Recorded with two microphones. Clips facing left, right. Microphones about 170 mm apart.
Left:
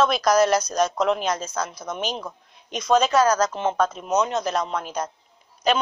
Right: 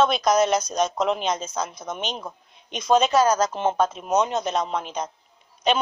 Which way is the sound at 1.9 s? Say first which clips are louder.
Left 2 dB; centre (ahead or behind).